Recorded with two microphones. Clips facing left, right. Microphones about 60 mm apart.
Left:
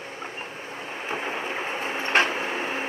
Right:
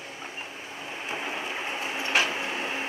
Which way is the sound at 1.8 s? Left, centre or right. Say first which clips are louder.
Left 4 dB; left.